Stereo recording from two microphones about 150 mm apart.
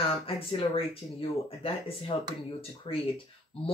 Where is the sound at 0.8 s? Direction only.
40° left (ahead or behind).